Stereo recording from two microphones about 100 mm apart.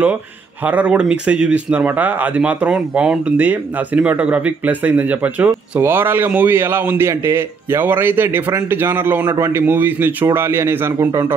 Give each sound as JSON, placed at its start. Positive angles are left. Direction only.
{"t": 0.7, "sound": "a man's voice", "side_deg": -15}